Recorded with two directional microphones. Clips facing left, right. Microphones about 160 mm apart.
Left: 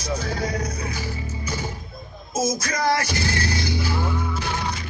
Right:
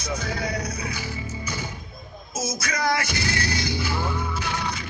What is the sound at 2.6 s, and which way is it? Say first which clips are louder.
Music: left 2 dB; 35° left (ahead or behind).